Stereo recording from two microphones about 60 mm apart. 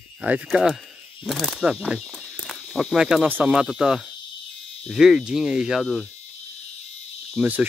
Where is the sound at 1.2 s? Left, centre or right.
Centre.